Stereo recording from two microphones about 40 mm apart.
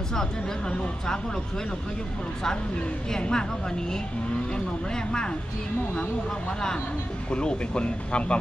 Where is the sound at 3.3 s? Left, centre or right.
Centre.